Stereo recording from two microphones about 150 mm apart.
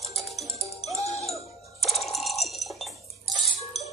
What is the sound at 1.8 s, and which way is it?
Mechanisms, centre (ahead or behind).